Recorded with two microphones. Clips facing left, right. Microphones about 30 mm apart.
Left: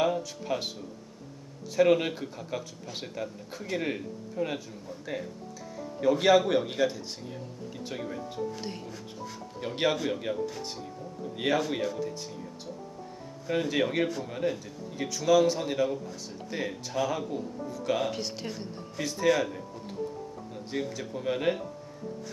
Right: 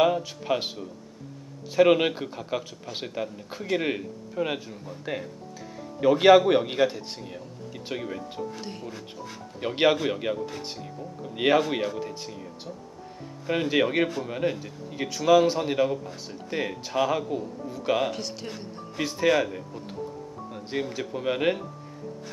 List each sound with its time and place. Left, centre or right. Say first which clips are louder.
0.0 s speech: right 5 dB; right
1.8 s speech: right 4 dB; right
8.5 s speech: even; centre
8.8 s speech: right 2 dB; right
13.5 s speech: right 4 dB; right
16.8 s speech: right 5 dB; right
18.1 s speech: even; centre
18.9 s speech: right 3 dB; right